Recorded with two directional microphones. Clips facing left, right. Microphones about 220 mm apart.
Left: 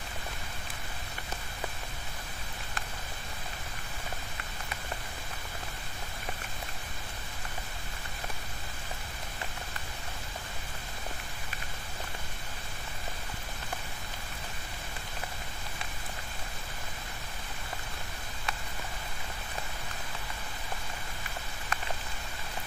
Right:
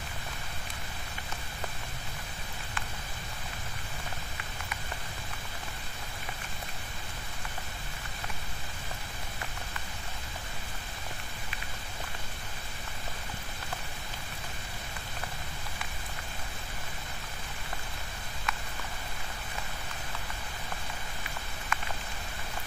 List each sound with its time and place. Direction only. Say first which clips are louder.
21.7 s rain on surface: right 1 dB; 35° left (ahead or behind)